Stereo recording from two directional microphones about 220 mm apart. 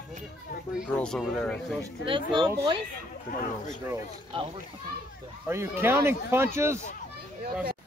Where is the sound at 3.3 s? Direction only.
40° left (ahead or behind).